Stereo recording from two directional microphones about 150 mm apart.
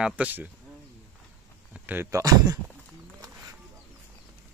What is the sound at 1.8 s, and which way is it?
Speech, 15° right (ahead or behind).